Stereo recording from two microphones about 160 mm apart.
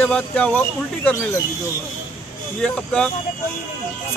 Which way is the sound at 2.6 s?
5° left (ahead or behind).